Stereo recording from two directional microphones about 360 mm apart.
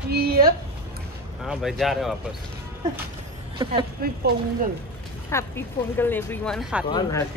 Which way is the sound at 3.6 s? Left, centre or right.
Centre.